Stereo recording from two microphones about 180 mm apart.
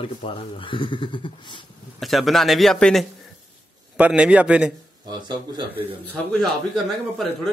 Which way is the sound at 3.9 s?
5° right (ahead or behind).